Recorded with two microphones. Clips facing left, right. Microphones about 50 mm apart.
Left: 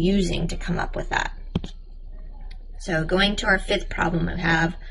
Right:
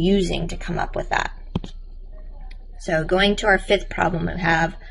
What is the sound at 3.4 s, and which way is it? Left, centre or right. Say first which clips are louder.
Speech: right 4 dB; right.